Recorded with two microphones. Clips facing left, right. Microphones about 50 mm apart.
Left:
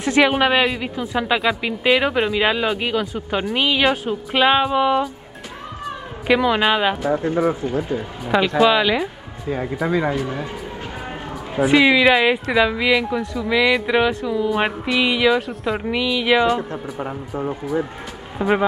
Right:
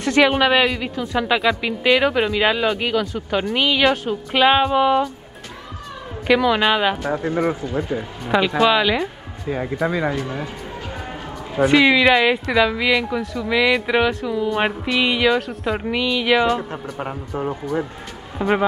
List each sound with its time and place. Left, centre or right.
0.0 s speech: centre
6.2 s speech: centre
7.1 s speech: right
7.6 s speech: left
8.2 s speech: centre
11.6 s speech: centre
18.4 s speech: centre